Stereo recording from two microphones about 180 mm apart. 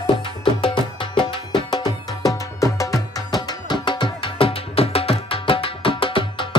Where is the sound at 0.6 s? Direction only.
30° left (ahead or behind).